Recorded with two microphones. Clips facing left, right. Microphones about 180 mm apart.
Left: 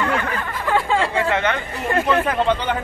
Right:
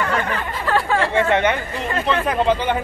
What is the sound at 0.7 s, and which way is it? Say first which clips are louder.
Chatter: even; 20° left (ahead or behind).